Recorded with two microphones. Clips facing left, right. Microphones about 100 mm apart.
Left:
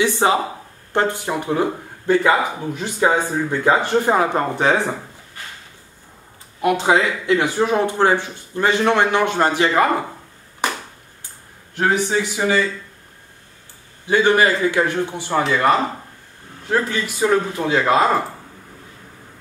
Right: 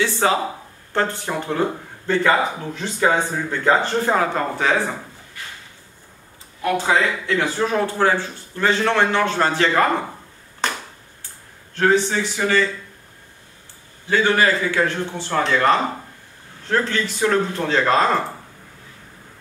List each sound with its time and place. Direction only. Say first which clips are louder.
0.0 s speech: left 2 dB; 20° left (ahead or behind)
6.6 s speech: left 2 dB; 15° left (ahead or behind)
10.6 s a sound: left 1 dB; 10° left (ahead or behind)
11.7 s a man's voice: right 1 dB; 15° left (ahead or behind)
14.0 s speech: left 2 dB; 15° left (ahead or behind)